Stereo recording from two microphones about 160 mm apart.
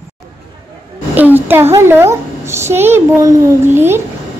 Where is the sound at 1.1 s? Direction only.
10° right (ahead or behind).